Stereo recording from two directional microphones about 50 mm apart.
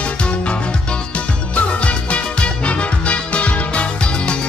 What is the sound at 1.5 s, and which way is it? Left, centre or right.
Music, left.